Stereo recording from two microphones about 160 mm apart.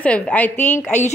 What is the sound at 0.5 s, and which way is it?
Speech, 45° left (ahead or behind).